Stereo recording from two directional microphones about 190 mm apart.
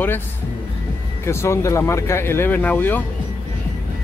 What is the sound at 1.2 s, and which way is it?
Speech, 15° left (ahead or behind).